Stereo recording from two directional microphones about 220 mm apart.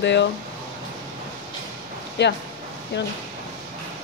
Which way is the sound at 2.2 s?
50° left (ahead or behind).